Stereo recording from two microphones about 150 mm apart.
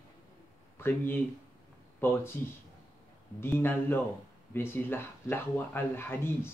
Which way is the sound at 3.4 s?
15° left (ahead or behind).